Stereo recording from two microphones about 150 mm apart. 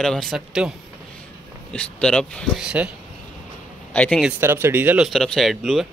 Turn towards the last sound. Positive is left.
turn(degrees=0)  # may be behind; listen again after turning